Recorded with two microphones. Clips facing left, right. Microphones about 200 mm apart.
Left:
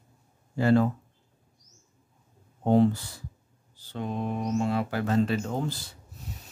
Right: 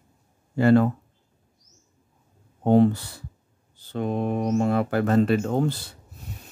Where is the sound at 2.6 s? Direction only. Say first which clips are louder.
Right 4 dB; 60° right (ahead or behind).